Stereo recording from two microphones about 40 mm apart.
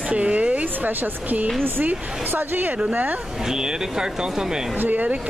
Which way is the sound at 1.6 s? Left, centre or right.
Right.